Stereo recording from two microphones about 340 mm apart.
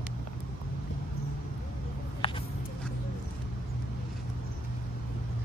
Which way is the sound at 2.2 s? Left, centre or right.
Centre.